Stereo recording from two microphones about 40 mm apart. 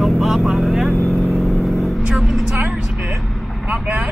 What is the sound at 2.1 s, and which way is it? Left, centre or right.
Vehicle, centre.